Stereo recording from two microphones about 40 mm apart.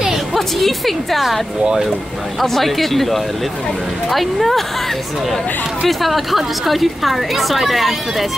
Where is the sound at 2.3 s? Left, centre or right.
Centre.